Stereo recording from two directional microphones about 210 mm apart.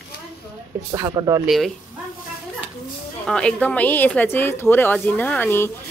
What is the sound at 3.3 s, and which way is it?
A woman's voice, 5° left (ahead or behind).